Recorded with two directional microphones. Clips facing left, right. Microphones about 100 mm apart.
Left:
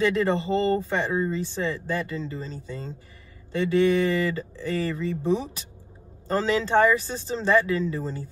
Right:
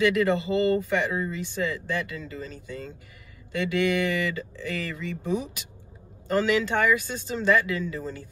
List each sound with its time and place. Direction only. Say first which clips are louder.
0.0 s speech: even; 30° left (ahead or behind)